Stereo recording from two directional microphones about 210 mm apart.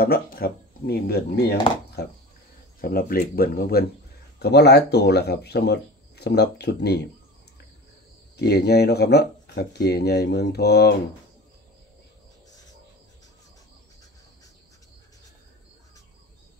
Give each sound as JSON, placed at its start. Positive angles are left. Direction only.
{"t": 0.0, "sound": "speech", "side_deg": 50}
{"t": 8.4, "sound": "speech", "side_deg": 50}